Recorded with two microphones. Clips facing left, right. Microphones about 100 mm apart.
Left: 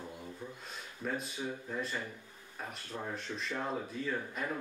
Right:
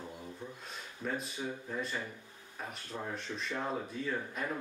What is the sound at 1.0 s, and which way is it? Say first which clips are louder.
Speech: even; centre (ahead or behind).